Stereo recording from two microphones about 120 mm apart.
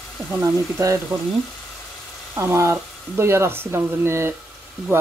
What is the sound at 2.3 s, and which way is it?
Speech, 25° right (ahead or behind).